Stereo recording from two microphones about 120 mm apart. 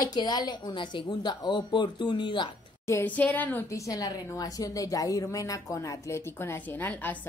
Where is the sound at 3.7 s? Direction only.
30° left (ahead or behind).